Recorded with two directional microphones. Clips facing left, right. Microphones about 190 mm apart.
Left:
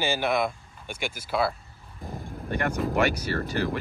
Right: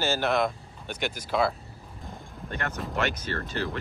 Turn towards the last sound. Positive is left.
turn(degrees=10)  # may be behind; listen again after turning